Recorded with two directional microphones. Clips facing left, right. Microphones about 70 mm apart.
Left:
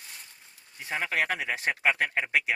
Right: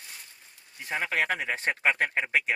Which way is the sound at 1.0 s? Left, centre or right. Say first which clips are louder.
Even; centre.